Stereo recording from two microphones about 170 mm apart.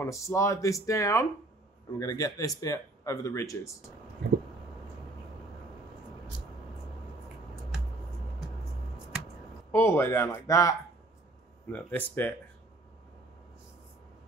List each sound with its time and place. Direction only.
0.0 s speech: 15° left (ahead or behind)
9.7 s speech: 15° left (ahead or behind)